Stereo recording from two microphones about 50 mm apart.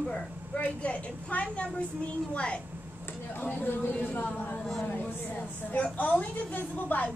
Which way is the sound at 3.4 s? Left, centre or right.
Left.